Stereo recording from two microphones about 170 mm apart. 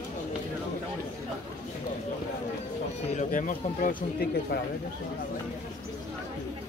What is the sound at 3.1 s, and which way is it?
Speech, 50° left (ahead or behind).